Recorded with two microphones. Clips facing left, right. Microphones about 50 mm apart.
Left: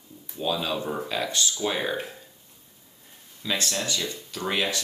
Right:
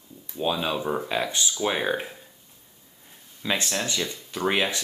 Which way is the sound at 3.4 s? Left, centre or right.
Right.